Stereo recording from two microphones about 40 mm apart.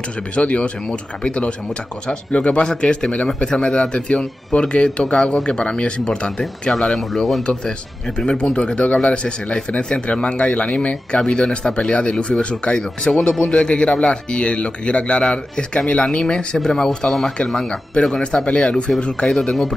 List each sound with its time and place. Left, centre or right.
0.4 s speech: left
6.7 s speech: centre
8.2 s speech: left
13.5 s speech: left
18.2 s speech: left
19.2 s a man's voice: centre